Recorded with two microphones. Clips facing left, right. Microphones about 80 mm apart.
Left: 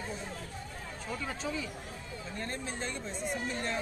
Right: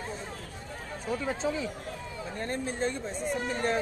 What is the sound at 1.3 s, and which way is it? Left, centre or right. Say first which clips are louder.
Speech: right 6 dB; right.